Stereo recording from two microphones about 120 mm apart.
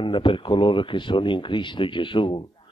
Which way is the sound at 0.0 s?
45° left (ahead or behind).